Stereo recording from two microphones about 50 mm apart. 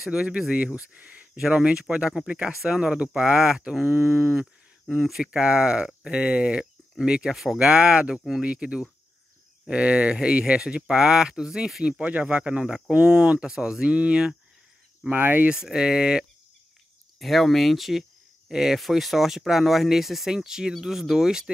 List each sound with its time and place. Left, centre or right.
0.1 s speech: right
1.4 s speech: centre
4.8 s speech: centre
5.2 s speech: centre
11.8 s speech: right
15.1 s speech: right
15.4 s speech: centre
17.2 s speech: centre